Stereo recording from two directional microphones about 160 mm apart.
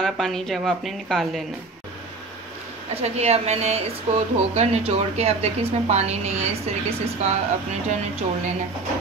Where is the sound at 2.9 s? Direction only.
40° right (ahead or behind).